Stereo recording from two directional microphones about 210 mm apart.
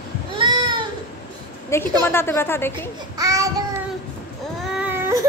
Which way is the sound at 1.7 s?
10° left (ahead or behind).